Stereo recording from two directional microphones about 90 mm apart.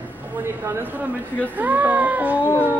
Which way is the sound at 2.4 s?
20° left (ahead or behind).